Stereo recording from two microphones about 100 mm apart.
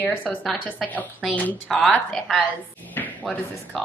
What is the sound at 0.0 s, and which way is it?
Speech, 15° left (ahead or behind).